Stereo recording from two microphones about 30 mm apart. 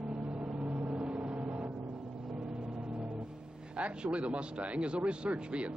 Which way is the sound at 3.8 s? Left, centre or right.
Right.